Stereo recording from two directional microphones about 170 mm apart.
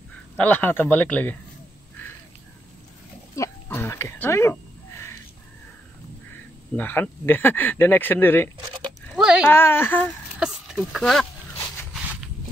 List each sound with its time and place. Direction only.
0.4 s speech: 10° left (ahead or behind)
3.3 s a sound: 15° left (ahead or behind)
6.8 s speech: 10° left (ahead or behind)
9.1 s a sound: 5° right (ahead or behind)
9.5 s speech: 15° left (ahead or behind)
10.4 s speech: 5° right (ahead or behind)
11.9 s walk: centre (ahead or behind)